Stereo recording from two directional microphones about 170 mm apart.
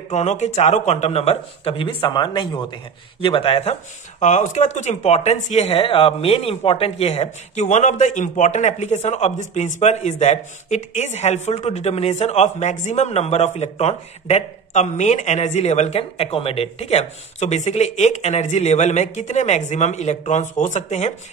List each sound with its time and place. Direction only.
0.1 s speech: 45° left (ahead or behind)
4.2 s speech: 45° left (ahead or behind)